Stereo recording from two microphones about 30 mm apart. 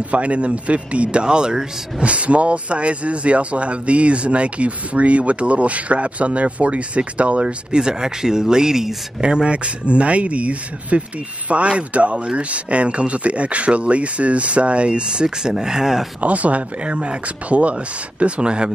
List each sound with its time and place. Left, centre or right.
0.1 s speech: right
1.2 s speech: right
2.0 s speech: right; by 8.9 s centre
9.2 s speech: right
15.2 s speech: right
16.2 s speech: right
18.2 s speech: right